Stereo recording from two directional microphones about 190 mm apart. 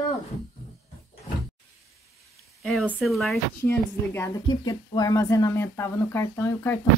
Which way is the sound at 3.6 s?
10° left (ahead or behind).